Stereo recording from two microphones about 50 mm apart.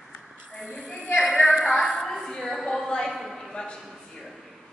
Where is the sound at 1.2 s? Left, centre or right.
Centre.